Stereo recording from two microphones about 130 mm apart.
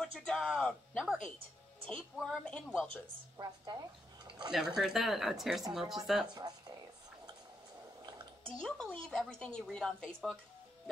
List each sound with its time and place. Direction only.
0.0 s speech: 5° left (ahead or behind)
3.3 s a woman's voice: 30° right (ahead or behind)
4.5 s speech: 5° right (ahead or behind)
6.4 s a woman's voice: 30° right (ahead or behind)
8.6 s speech: centre (ahead or behind)